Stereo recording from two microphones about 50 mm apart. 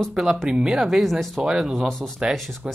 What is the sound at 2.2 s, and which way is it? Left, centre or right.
Speech, right.